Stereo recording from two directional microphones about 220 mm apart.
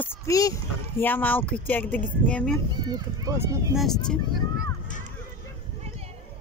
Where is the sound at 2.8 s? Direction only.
15° right (ahead or behind).